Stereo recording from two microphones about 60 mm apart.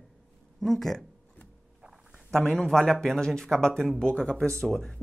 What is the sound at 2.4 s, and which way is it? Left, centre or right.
Speech, centre.